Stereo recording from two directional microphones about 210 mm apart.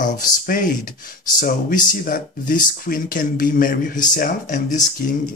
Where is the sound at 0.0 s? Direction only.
40° left (ahead or behind).